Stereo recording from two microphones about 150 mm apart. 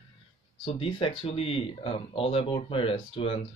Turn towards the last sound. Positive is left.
turn(degrees=35)  # may be behind; listen again after turning